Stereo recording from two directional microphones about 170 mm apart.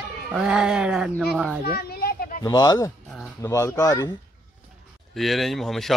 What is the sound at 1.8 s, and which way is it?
Children playing, 65° left (ahead or behind).